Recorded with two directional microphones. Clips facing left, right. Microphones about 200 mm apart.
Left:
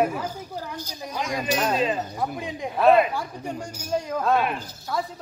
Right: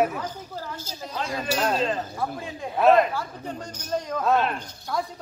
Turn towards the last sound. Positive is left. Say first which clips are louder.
# even
turn(degrees=5)  # may be behind; listen again after turning